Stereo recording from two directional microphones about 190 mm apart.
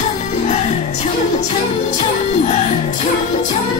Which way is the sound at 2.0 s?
35° left (ahead or behind).